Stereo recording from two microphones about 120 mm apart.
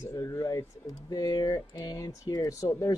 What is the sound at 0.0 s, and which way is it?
Speech, 25° left (ahead or behind).